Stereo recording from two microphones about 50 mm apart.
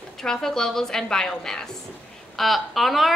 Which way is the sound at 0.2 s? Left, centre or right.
Centre.